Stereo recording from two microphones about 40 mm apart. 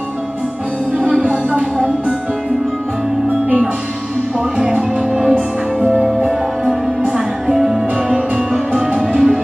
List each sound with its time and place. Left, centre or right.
0.9 s music: right
4.6 s music: centre
6.1 s music: right